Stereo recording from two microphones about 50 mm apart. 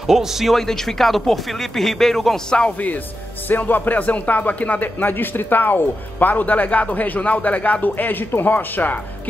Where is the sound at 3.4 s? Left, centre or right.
Left.